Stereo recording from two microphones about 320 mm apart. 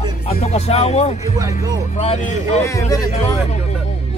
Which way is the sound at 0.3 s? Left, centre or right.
Left.